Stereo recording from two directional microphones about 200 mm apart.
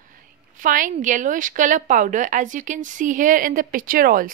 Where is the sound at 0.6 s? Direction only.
40° right (ahead or behind).